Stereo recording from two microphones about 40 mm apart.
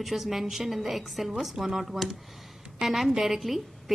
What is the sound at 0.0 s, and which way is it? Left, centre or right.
Speech, centre.